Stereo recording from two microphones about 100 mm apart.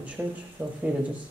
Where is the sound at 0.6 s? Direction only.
20° right (ahead or behind).